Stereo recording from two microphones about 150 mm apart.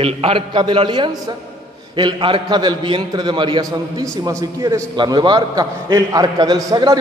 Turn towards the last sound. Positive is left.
turn(degrees=-25)  # may be behind; listen again after turning